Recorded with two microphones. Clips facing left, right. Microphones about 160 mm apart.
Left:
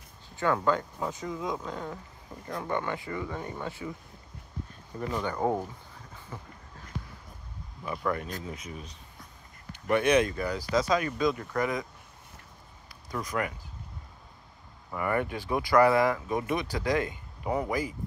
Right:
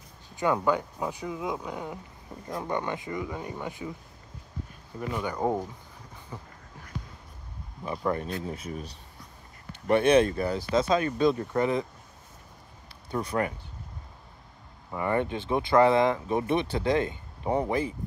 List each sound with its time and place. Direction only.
0.4 s speech: 15° right (ahead or behind)
5.1 s speech: 10° right (ahead or behind)
7.8 s speech: 25° right (ahead or behind)
9.8 s speech: 25° right (ahead or behind)
13.1 s speech: 30° right (ahead or behind)
15.0 s speech: 25° right (ahead or behind)